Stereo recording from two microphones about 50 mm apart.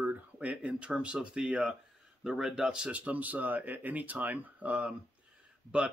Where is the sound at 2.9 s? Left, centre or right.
Right.